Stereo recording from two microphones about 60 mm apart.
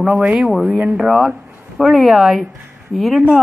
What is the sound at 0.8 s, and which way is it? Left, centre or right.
A woman's voice, centre.